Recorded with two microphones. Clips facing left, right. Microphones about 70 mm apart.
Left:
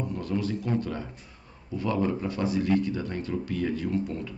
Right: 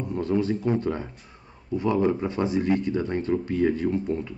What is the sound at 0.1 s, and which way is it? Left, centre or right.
Speech, right.